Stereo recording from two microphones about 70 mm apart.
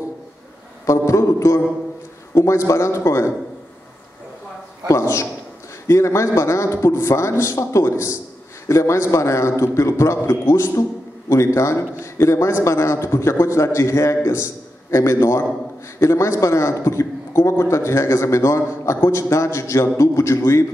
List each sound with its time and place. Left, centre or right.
0.8 s a man's voice: left
4.8 s a man's voice: left